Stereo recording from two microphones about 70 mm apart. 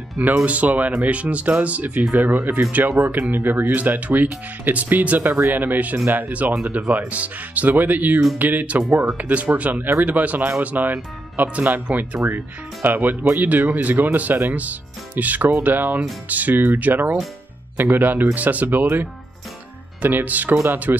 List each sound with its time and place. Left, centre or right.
0.2 s speech: right